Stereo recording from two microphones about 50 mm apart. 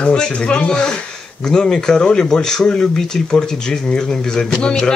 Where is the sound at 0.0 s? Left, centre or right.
Left.